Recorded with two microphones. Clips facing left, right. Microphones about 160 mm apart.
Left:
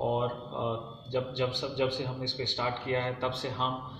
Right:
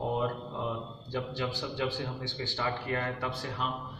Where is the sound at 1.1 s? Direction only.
20° left (ahead or behind).